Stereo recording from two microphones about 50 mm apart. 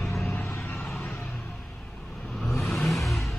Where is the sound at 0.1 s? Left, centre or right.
Left.